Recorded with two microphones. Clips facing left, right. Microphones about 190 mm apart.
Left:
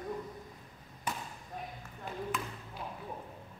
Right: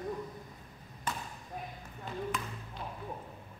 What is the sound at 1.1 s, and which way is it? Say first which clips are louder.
Basketball bounce: even; 15° left (ahead or behind).